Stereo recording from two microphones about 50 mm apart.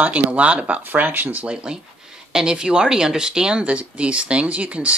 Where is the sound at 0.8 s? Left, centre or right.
Right.